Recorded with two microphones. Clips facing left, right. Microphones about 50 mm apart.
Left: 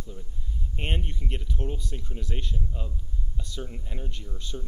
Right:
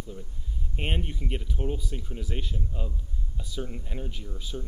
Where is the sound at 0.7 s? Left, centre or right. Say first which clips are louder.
Right 1 dB; centre.